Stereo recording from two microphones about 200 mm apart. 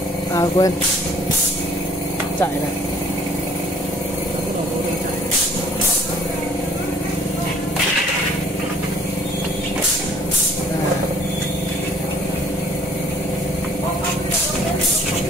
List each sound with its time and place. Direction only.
0.3 s speech: 20° left (ahead or behind)